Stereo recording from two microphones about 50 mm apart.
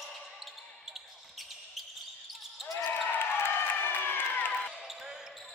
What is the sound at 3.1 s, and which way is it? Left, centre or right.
Crowd, left.